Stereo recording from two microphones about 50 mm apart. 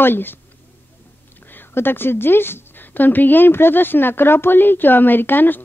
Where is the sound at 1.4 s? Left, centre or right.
Left.